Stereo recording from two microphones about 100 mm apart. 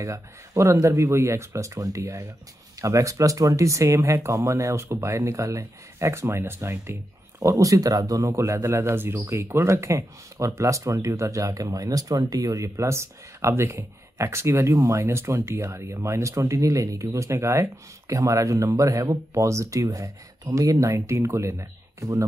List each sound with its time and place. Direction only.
0.0 s speech: 30° right (ahead or behind)